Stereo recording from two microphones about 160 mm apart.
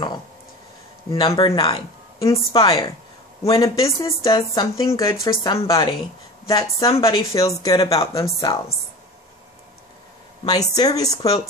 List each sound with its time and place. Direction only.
1.1 s speech: 25° left (ahead or behind)
2.5 s a woman's voice: 35° left (ahead or behind)
3.4 s speech: 20° left (ahead or behind)
10.4 s speech: 25° left (ahead or behind)